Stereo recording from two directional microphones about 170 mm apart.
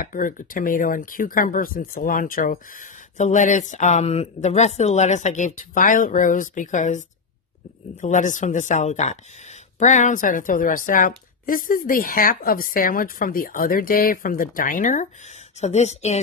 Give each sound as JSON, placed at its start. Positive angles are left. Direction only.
{"t": 0.0, "sound": "a woman's voice", "side_deg": 55}
{"t": 3.2, "sound": "speech", "side_deg": 45}
{"t": 8.0, "sound": "a woman's voice", "side_deg": 45}